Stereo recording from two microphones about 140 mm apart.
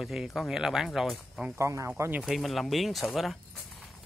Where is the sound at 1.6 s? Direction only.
20° right (ahead or behind).